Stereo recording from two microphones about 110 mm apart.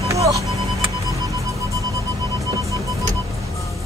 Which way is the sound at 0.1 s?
30° right (ahead or behind).